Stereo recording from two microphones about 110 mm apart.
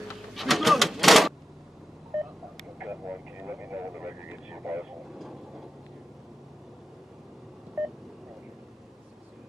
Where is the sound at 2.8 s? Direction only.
15° right (ahead or behind).